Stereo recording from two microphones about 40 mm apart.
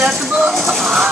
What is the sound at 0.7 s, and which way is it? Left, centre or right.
Chicken, centre.